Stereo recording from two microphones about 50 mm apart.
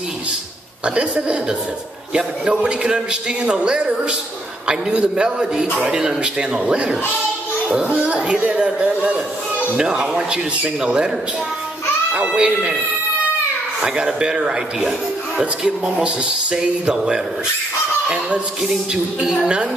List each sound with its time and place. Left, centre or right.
0.8 s a man's voice: right
12.3 s a man's voice: centre
13.7 s a man's voice: centre
19.4 s speech: centre